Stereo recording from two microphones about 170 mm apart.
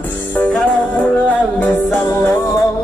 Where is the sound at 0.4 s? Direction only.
5° left (ahead or behind).